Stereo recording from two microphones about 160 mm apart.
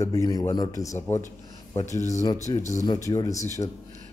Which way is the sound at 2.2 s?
20° left (ahead or behind).